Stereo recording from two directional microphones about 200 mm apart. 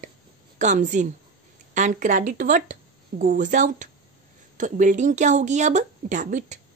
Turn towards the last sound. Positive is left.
turn(degrees=-40)  # may be behind; listen again after turning